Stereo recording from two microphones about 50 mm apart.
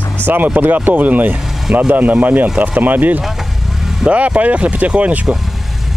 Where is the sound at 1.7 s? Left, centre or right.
Right.